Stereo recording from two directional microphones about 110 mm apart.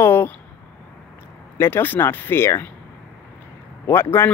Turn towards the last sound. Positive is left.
turn(degrees=20)  # may be behind; listen again after turning